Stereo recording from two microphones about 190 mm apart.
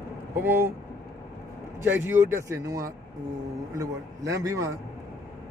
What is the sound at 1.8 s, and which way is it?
A man's voice, 10° right (ahead or behind).